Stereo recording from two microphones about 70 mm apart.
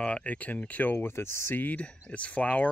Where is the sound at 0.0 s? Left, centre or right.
Centre.